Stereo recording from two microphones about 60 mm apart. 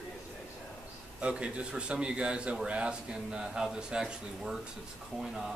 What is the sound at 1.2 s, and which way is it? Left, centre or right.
A man's voice, centre.